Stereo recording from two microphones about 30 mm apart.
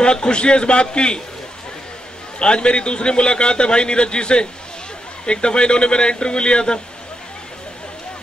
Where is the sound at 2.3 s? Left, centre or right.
Left.